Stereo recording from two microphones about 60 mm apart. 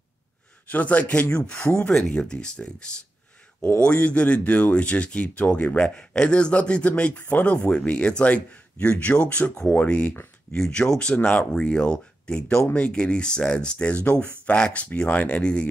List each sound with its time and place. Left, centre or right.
0.7 s speech: left